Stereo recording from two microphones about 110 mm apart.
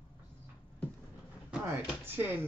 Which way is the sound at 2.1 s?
20° right (ahead or behind).